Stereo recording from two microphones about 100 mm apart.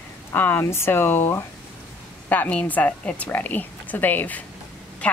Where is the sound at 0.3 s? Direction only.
20° left (ahead or behind).